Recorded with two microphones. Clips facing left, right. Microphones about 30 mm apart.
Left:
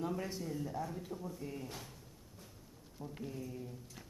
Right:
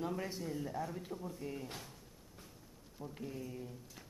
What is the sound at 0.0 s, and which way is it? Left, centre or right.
Speech, centre.